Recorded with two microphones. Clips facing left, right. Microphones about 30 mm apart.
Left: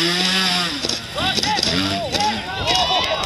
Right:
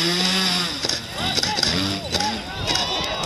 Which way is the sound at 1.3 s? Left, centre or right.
Centre.